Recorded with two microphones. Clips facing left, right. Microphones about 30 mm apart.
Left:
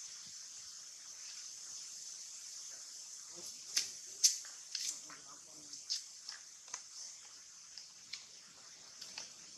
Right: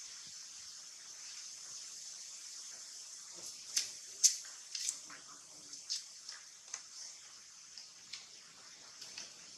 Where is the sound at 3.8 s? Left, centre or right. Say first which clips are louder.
Even; centre.